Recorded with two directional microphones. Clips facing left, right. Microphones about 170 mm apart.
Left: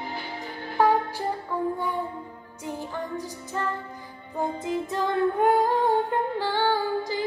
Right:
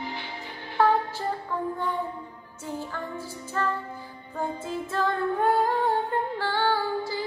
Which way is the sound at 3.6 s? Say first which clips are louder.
Right 2 dB; 15° left (ahead or behind).